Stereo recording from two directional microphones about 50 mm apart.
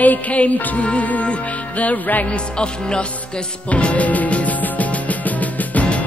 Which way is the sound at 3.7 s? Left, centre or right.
Left.